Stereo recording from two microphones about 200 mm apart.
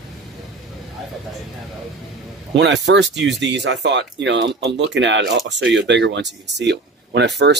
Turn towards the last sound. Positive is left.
turn(degrees=-60)  # may be behind; listen again after turning